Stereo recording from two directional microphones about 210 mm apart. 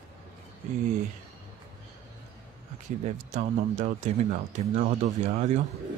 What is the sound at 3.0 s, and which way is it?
Speech, 35° right (ahead or behind).